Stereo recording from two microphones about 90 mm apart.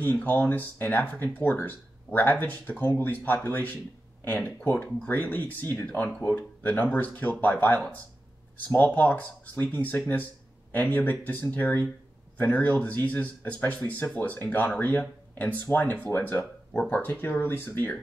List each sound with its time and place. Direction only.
0.0 s speech: 20° left (ahead or behind)